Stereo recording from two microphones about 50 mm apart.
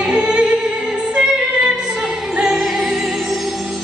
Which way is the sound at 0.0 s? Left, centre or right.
Centre.